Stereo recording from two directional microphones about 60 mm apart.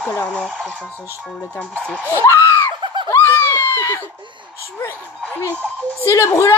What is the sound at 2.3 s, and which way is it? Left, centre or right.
Screaming, left.